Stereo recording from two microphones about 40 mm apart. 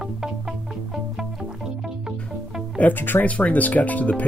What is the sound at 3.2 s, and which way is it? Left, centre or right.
Speech, left.